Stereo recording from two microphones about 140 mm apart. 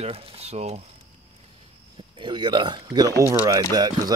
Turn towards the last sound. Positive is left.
turn(degrees=-30)  # may be behind; listen again after turning